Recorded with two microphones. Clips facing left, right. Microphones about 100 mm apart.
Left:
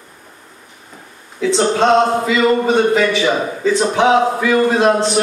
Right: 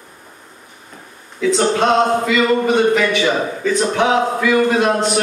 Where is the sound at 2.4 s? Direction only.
30° left (ahead or behind).